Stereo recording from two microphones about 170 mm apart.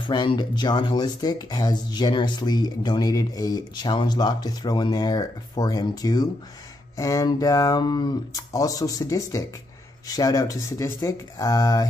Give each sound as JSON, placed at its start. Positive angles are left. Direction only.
{"t": 0.0, "sound": "speech", "side_deg": 25}